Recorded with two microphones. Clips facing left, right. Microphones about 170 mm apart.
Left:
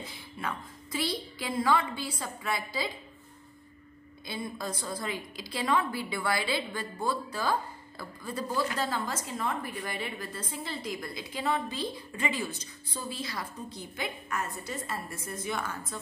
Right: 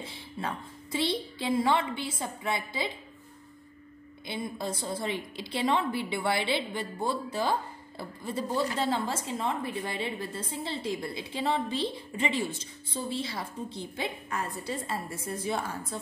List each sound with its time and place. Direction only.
0.0 s a woman's voice: 30° right (ahead or behind)
4.3 s a woman's voice: 25° right (ahead or behind)